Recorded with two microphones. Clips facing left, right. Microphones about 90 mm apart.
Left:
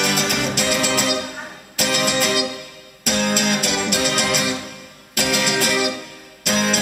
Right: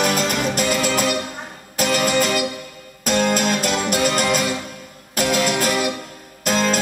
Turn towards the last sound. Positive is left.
turn(degrees=-40)  # may be behind; listen again after turning